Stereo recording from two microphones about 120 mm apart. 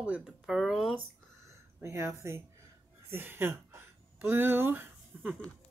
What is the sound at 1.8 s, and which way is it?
Speech, 25° right (ahead or behind).